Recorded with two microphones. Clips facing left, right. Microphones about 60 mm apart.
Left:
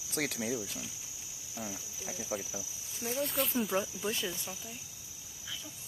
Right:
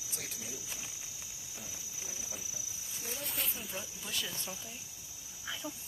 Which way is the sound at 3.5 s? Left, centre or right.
Left.